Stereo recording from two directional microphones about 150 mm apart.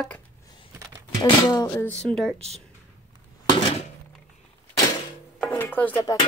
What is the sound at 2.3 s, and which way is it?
Speech, 45° right (ahead or behind).